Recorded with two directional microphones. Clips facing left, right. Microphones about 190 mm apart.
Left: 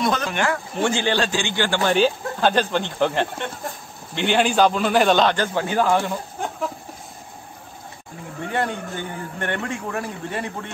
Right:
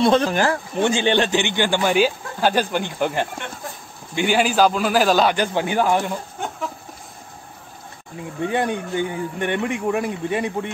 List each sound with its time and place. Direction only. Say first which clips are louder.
0.0 s speech: right 5 dB; 30° right (ahead or behind)
0.7 s speech: right 3 dB; 20° right (ahead or behind)
8.4 s speech: right 3 dB; 15° right (ahead or behind)